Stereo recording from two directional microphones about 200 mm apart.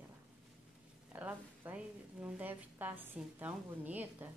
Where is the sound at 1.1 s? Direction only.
10° right (ahead or behind).